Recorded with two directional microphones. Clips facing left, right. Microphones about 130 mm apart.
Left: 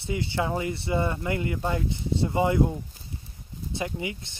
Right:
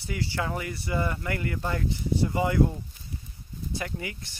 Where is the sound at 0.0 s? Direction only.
20° left (ahead or behind).